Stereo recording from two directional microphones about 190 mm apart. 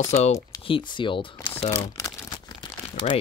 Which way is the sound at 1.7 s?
20° left (ahead or behind).